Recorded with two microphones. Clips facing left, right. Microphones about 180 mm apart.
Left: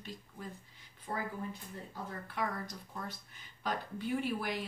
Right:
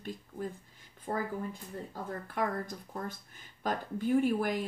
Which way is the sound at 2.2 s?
45° right (ahead or behind).